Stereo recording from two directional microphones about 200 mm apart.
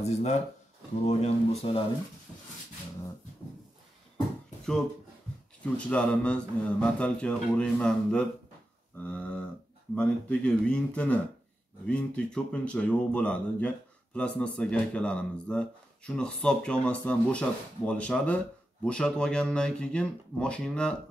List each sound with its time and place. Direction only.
0.0 s speech: 35° left (ahead or behind)
5.6 s speech: 5° left (ahead or behind)
8.9 s a sound: 5° left (ahead or behind)
9.9 s speech: 5° left (ahead or behind)